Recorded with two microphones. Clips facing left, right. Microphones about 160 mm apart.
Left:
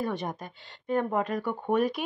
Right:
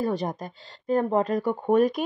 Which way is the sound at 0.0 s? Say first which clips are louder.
Right 5 dB; 35° right (ahead or behind).